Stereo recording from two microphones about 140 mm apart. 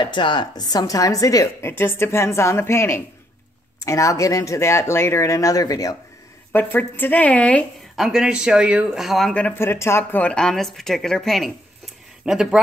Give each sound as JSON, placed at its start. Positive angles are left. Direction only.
{"t": 0.0, "sound": "a woman's voice", "side_deg": 35}
{"t": 6.5, "sound": "speech", "side_deg": 15}